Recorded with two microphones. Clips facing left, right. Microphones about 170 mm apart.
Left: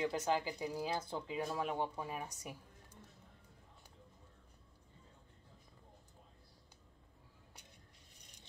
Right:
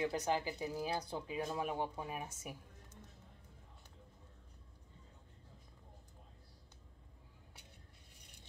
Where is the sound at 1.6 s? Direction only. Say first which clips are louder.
Left 1 dB; 15° right (ahead or behind).